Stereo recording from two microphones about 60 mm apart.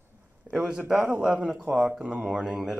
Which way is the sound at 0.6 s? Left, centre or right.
Centre.